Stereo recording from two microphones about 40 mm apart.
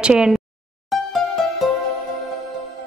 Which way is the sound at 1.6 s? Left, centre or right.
Centre.